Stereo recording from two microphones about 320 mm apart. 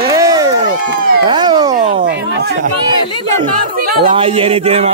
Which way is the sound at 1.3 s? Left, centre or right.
Centre.